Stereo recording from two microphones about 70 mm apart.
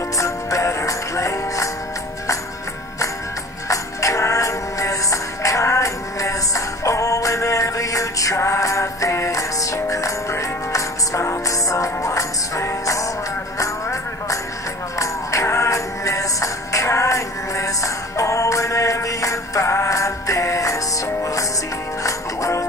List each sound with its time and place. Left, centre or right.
0.2 s music: left
3.6 s music: left